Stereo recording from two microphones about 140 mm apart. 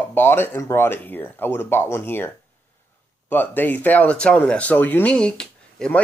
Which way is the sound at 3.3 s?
15° left (ahead or behind).